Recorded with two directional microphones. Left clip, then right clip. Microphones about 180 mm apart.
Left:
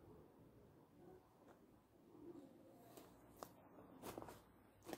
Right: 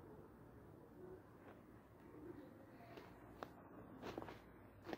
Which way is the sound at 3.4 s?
10° left (ahead or behind).